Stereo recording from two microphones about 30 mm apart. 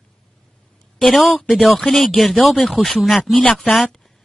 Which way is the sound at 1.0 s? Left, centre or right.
Centre.